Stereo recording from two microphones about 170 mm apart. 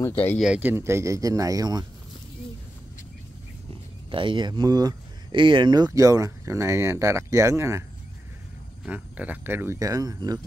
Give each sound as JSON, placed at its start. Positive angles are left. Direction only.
{"t": 0.0, "sound": "speech", "side_deg": 10}
{"t": 0.4, "sound": "speech", "side_deg": -5}
{"t": 4.1, "sound": "speech", "side_deg": -30}
{"t": 8.8, "sound": "speech", "side_deg": -10}